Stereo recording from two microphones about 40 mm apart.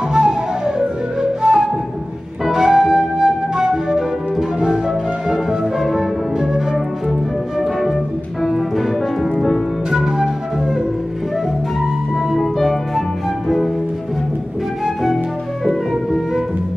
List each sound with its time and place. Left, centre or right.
0.1 s music: centre
1.4 s flute: centre
5.8 s music: centre
8.5 s music: centre
9.8 s flute: centre
12.3 s music: centre
15.6 s music: centre